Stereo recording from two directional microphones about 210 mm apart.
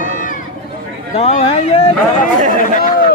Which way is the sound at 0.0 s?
40° left (ahead or behind).